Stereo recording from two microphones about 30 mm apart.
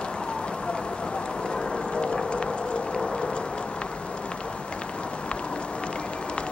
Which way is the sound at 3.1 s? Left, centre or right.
Left.